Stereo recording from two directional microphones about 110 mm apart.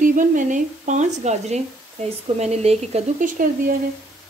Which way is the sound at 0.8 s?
90° right.